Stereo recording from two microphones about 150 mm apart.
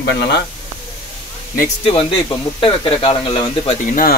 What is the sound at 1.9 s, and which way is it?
Speech, 35° left (ahead or behind).